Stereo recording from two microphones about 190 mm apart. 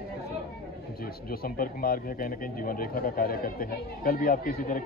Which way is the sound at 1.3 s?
50° left (ahead or behind).